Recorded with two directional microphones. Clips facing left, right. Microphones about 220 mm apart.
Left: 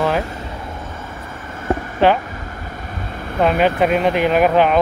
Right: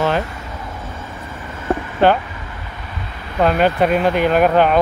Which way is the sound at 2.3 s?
45° left (ahead or behind).